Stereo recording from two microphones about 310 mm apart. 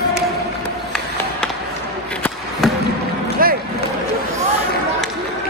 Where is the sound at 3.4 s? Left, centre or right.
Right.